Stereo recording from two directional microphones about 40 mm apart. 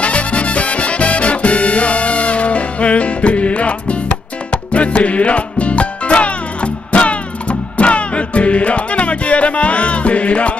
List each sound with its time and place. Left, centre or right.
0.0 s music: left